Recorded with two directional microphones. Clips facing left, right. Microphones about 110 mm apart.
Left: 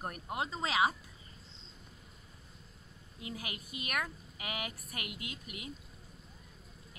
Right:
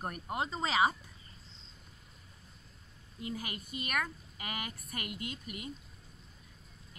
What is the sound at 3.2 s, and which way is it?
Speech, 5° left (ahead or behind).